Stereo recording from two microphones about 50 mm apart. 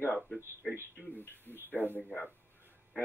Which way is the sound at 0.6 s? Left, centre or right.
Left.